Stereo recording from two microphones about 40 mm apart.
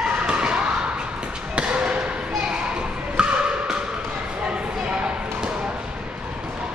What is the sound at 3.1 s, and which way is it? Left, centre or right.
Music, right.